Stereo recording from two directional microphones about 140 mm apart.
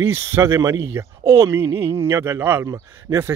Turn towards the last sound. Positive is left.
turn(degrees=-20)  # may be behind; listen again after turning